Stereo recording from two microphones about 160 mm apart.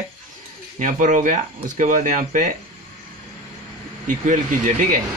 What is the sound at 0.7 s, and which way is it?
Speech, 55° right (ahead or behind).